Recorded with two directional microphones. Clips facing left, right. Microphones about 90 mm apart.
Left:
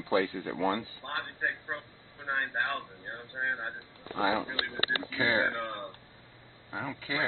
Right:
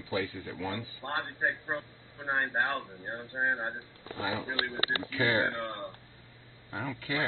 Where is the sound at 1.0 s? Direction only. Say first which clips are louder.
Right 5 dB; 25° right (ahead or behind).